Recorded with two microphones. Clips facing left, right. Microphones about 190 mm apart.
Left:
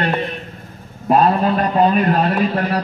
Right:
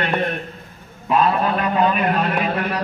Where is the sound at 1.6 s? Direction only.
40° left (ahead or behind).